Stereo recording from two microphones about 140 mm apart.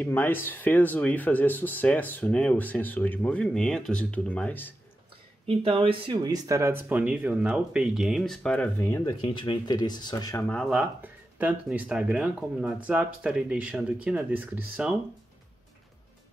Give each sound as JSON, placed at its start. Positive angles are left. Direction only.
{"t": 0.0, "sound": "speech", "side_deg": 15}
{"t": 5.5, "sound": "speech", "side_deg": -40}
{"t": 6.9, "sound": "speech", "side_deg": -10}
{"t": 9.2, "sound": "speech", "side_deg": 35}
{"t": 10.5, "sound": "speech", "side_deg": 0}
{"t": 11.0, "sound": "speech", "side_deg": -10}